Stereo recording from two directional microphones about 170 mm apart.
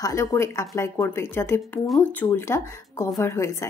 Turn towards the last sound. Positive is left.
turn(degrees=15)  # may be behind; listen again after turning